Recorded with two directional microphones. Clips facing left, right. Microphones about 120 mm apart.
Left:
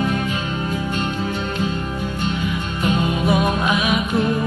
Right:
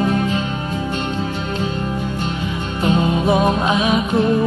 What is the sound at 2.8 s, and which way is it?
Music, 30° right (ahead or behind).